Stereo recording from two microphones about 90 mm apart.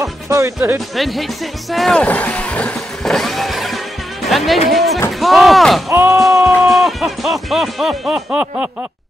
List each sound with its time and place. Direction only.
0.0 s music: 35° right (ahead or behind)
0.9 s speech: centre (ahead or behind)
2.0 s vehicle: 15° left (ahead or behind); by 3.8 s centre (ahead or behind)
4.3 s speech: centre (ahead or behind)
5.9 s music: 30° right (ahead or behind)
6.4 s speech: 5° right (ahead or behind)